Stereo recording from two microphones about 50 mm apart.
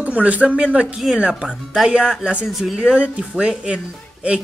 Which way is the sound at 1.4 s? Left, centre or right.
Centre.